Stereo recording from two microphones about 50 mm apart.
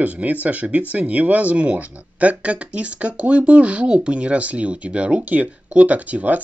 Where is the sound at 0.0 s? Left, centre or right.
Right.